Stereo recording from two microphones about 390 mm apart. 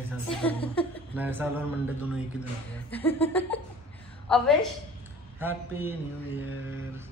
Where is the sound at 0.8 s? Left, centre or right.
Centre.